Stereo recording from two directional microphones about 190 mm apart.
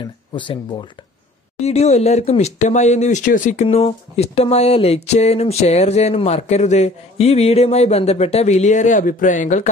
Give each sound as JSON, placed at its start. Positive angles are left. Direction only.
{"t": 0.0, "sound": "speech", "side_deg": 25}
{"t": 3.6, "sound": "speech", "side_deg": 30}